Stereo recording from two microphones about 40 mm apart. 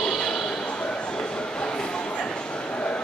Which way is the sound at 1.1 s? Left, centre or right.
Left.